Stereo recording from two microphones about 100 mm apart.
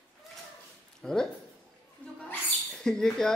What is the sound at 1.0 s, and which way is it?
Speech, 5° left (ahead or behind).